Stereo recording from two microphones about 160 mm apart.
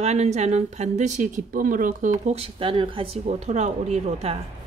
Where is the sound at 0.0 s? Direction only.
45° right (ahead or behind).